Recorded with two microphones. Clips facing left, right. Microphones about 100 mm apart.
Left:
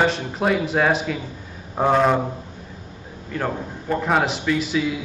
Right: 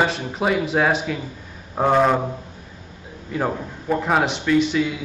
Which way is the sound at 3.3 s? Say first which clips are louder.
Right 2 dB; 10° right (ahead or behind).